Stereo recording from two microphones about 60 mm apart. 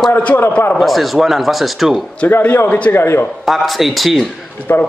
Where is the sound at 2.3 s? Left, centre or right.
Left.